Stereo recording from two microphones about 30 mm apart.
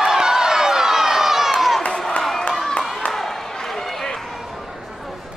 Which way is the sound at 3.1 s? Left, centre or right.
Centre.